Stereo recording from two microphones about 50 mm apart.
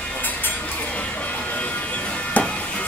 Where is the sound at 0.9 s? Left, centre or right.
Left.